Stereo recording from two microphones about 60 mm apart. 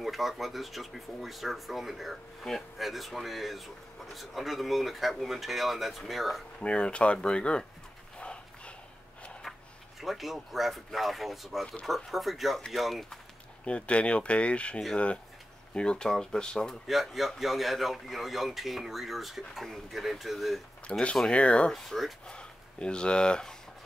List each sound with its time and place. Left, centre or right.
0.0 s speech: centre
6.6 s speech: centre
8.2 s a sound: centre
9.4 s speech: centre
13.7 s speech: centre
16.8 s speech: centre
20.9 s speech: centre
21.7 s speech: centre
22.3 s speech: centre